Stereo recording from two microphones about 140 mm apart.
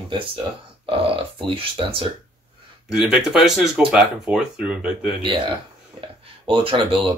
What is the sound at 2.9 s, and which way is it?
Speech, 5° right (ahead or behind).